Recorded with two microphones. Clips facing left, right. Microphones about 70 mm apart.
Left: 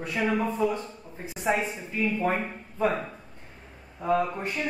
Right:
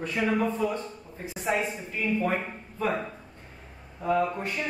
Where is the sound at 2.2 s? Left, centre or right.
Left.